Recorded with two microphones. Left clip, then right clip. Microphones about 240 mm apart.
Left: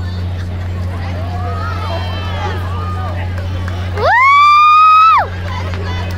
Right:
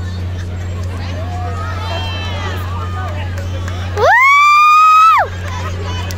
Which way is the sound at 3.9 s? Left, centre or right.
Right.